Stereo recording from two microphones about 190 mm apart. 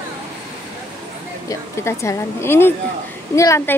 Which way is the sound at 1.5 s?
15° left (ahead or behind).